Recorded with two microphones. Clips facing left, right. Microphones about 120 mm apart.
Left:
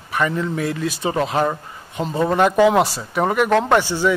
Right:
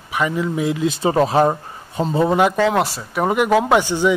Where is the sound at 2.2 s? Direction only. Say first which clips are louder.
Left 2 dB; 10° right (ahead or behind).